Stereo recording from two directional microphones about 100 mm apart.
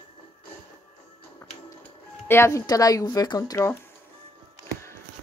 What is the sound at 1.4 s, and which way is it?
Music, 25° left (ahead or behind).